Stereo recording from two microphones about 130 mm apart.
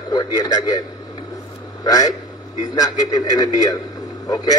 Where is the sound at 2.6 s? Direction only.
30° left (ahead or behind).